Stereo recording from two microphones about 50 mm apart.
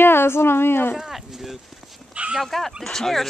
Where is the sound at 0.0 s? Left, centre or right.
Left.